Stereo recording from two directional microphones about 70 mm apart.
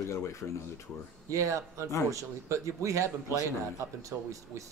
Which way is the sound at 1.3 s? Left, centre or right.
Right.